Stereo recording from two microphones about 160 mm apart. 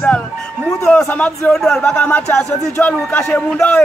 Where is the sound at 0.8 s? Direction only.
5° left (ahead or behind).